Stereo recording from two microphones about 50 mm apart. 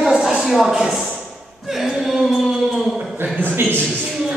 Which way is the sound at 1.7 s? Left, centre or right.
Centre.